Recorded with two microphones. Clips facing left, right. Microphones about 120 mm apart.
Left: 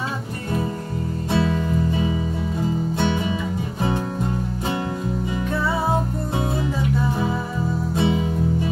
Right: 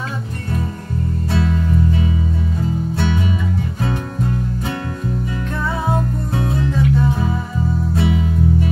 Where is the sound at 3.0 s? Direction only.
20° left (ahead or behind).